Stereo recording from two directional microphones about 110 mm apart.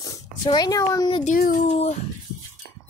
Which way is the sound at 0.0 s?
35° left (ahead or behind).